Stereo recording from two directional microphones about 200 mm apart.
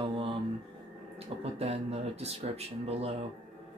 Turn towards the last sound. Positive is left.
turn(degrees=-30)  # may be behind; listen again after turning